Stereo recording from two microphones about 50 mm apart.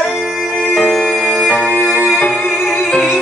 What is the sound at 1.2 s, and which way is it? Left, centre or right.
Music, centre.